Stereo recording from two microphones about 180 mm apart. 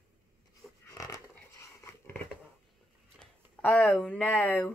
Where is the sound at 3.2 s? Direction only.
5° left (ahead or behind).